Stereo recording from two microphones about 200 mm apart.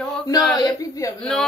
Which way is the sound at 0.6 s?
20° left (ahead or behind).